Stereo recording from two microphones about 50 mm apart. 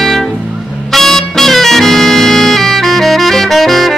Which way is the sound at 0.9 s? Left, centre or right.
Centre.